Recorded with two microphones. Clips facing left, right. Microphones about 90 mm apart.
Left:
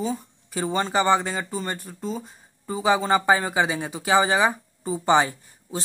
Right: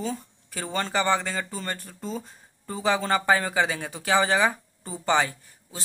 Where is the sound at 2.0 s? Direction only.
5° left (ahead or behind); by 5.8 s 20° left (ahead or behind).